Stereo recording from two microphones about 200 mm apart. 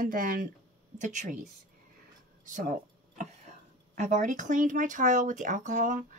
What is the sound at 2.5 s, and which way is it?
Speech, 40° right (ahead or behind).